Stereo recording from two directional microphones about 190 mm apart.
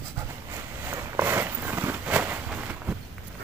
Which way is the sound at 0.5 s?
10° right (ahead or behind).